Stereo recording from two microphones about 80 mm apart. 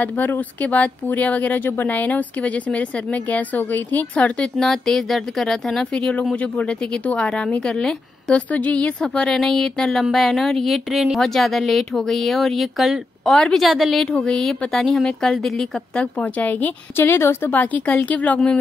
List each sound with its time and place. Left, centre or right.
0.0 s speech: left
4.2 s a woman's voice: centre
14.1 s a woman's voice: centre
16.0 s speech: centre
17.5 s speech: centre